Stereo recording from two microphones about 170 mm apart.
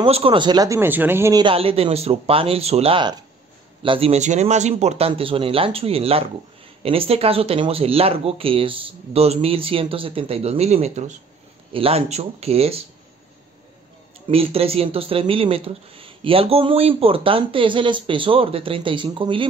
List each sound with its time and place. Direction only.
0.0 s speech: 30° right (ahead or behind); by 1.4 s 15° right (ahead or behind)
1.4 s speech: 35° right (ahead or behind)
14.3 s speech: 35° right (ahead or behind)